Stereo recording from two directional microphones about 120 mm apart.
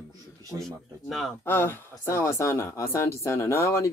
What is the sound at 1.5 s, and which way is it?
Speech, 20° left (ahead or behind).